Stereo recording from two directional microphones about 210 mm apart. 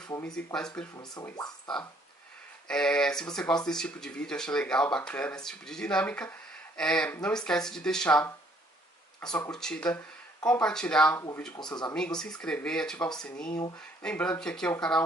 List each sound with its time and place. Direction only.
0.2 s speech: 5° left (ahead or behind)
0.9 s speech: 20° left (ahead or behind)
2.7 s speech: 5° left (ahead or behind)
9.5 s speech: 5° left (ahead or behind); by 11.9 s 20° left (ahead or behind)
11.9 s speech: 5° left (ahead or behind)